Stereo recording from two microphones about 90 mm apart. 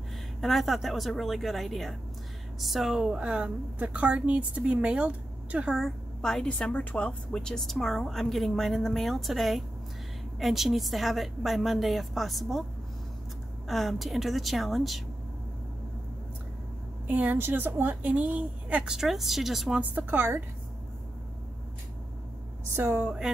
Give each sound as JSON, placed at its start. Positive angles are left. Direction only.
{"t": 0.4, "sound": "a woman's voice", "side_deg": 0}
{"t": 5.8, "sound": "a woman's voice", "side_deg": 5}
{"t": 13.7, "sound": "a woman's voice", "side_deg": 0}
{"t": 17.1, "sound": "a woman's voice", "side_deg": -20}
{"t": 18.9, "sound": "a woman's voice", "side_deg": 0}
{"t": 19.8, "sound": "a woman's voice", "side_deg": -20}
{"t": 22.8, "sound": "a woman's voice", "side_deg": -25}
{"t": 23.0, "sound": "a woman's voice", "side_deg": -10}